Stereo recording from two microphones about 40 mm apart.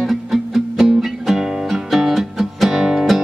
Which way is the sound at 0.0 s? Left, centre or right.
Centre.